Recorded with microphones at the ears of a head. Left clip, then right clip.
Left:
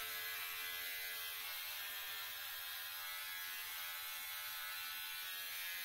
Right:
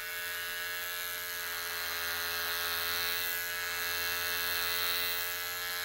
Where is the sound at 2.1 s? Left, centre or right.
Right.